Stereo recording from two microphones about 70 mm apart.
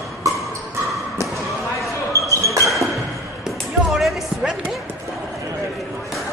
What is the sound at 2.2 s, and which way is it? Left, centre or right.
Basketball bounce, right.